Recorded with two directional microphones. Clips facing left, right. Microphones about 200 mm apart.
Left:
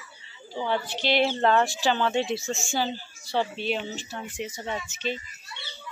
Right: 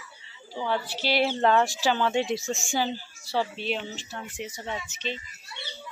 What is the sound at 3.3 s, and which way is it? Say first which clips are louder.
Speech: left 1 dB; centre (ahead or behind).